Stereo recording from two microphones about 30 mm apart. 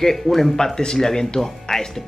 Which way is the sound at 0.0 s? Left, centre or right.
Centre.